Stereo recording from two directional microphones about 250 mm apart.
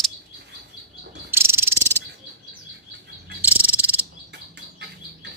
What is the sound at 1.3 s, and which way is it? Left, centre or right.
Cricket, centre.